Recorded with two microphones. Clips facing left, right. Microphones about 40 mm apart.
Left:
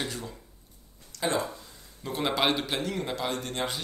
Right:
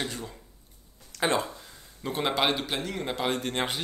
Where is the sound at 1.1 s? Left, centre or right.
Right.